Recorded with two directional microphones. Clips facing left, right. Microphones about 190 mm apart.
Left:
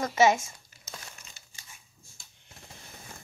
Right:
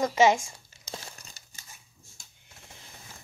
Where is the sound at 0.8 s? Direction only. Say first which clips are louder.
Right 4 dB; 35° right (ahead or behind).